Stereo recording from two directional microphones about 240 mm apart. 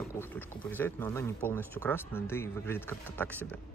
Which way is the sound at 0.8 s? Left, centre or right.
Centre.